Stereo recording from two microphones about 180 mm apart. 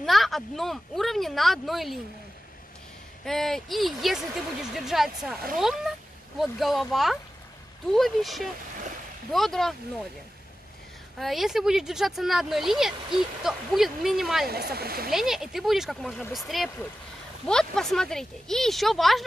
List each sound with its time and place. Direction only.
0.0 s speech: centre (ahead or behind)
3.3 s speech: centre (ahead or behind)
11.1 s speech: centre (ahead or behind)
14.5 s speech: 60° right (ahead or behind)
15.0 s speech: centre (ahead or behind)